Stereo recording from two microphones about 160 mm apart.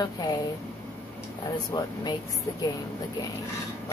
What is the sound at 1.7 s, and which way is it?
Speech, 25° left (ahead or behind).